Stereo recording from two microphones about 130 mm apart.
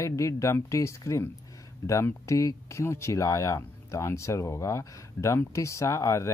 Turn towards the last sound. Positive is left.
turn(degrees=25)  # may be behind; listen again after turning